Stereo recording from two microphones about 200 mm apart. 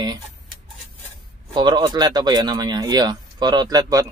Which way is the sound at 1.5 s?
20° right (ahead or behind).